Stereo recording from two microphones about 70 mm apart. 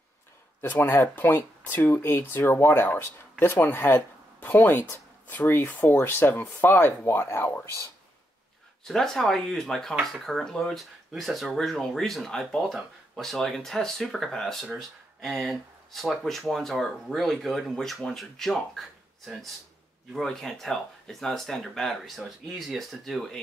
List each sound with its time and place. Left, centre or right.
0.6 s speech: left
8.8 s speech: centre